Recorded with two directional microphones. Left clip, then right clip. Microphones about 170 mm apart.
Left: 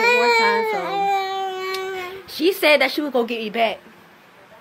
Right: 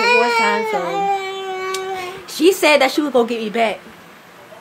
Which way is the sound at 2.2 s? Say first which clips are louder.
Right 4 dB; centre (ahead or behind).